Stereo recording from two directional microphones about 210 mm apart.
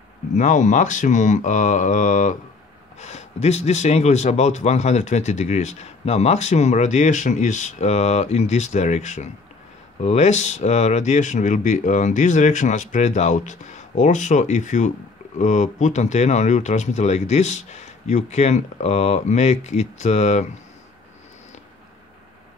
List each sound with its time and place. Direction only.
0.4 s speech: 35° left (ahead or behind)